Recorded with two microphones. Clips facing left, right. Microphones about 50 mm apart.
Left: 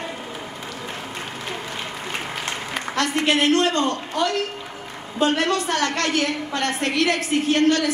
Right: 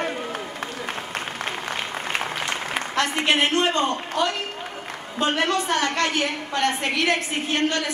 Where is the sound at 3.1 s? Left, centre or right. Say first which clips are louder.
Left 3 dB; centre.